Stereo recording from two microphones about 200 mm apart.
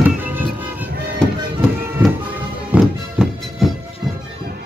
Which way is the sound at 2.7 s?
5° right (ahead or behind).